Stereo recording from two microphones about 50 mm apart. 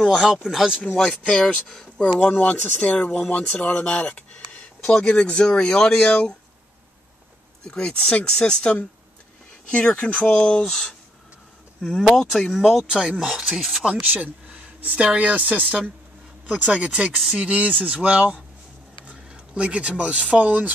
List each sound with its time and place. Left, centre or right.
0.0 s speech: centre
0.9 s speech: centre
1.7 s speech: centre
2.1 s speech: left
7.6 s speech: centre
10.3 s speech: centre
12.5 s speech: centre
12.9 s speech: right
13.3 s speech: centre
14.0 s speech: right
16.4 s speech: right
17.1 s speech: centre
17.4 s speech: right